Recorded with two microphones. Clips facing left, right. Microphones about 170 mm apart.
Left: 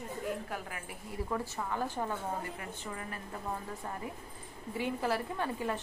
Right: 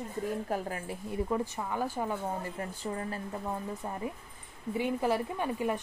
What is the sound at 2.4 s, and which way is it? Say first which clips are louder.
Speech: right 5 dB; 35° right (ahead or behind).